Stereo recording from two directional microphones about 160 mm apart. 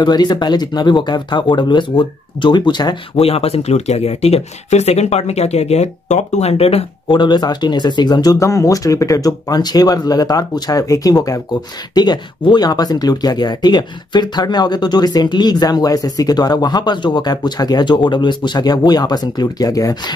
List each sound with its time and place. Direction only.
0.0 s speech: 25° left (ahead or behind)